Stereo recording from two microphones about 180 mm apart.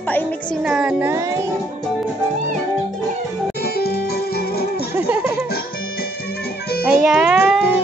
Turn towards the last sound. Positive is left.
turn(degrees=-5)  # may be behind; listen again after turning